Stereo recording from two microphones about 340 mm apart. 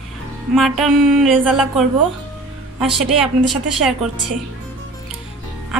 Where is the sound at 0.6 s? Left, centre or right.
Centre.